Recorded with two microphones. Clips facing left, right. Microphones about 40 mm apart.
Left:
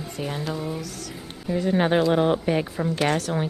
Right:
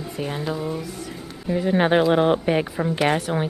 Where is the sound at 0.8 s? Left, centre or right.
Right.